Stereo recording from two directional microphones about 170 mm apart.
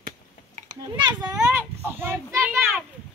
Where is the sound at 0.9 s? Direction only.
25° right (ahead or behind).